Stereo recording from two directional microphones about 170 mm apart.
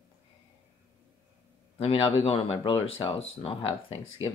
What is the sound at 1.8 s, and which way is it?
Speech, 35° left (ahead or behind).